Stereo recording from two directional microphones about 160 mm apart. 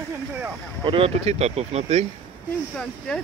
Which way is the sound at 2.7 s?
5° left (ahead or behind).